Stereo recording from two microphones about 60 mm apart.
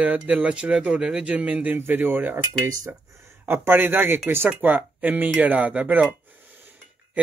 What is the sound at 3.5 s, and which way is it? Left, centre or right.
A man's voice, right.